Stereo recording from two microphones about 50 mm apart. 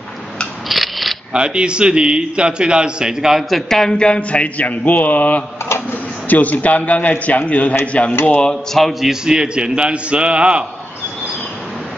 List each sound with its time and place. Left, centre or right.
0.7 s a sound: centre
1.3 s a man's voice: centre
3.4 s a man's voice: centre
4.0 s a man's voice: left
8.7 s a man's voice: centre
9.1 s a man's voice: centre